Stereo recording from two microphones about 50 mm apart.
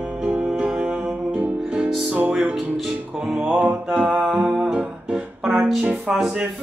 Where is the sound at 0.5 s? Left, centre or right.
Centre.